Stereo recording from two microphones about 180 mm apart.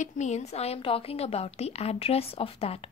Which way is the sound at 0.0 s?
40° left (ahead or behind).